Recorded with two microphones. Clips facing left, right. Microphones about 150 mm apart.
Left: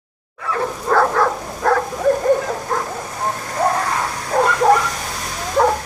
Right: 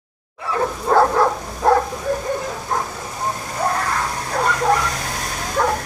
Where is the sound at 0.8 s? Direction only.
15° right (ahead or behind).